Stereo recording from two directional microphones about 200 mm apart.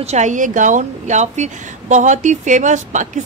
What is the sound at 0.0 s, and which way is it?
A woman's voice, 35° right (ahead or behind).